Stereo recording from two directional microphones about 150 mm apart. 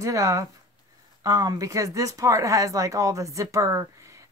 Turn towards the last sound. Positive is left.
turn(degrees=-20)  # may be behind; listen again after turning